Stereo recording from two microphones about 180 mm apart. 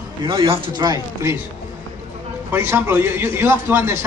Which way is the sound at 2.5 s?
15° right (ahead or behind).